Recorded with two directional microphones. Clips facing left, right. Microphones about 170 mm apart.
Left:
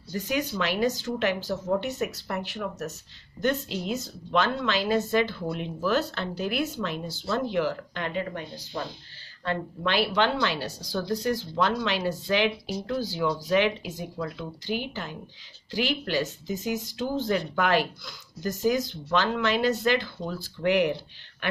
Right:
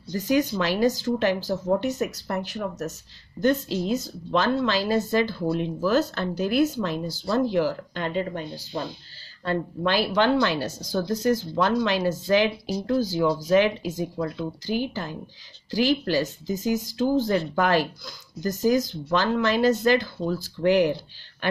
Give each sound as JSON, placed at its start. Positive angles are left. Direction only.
{"t": 0.1, "sound": "a woman's voice", "side_deg": -40}